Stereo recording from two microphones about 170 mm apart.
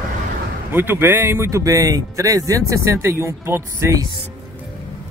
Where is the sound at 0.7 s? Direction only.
10° right (ahead or behind).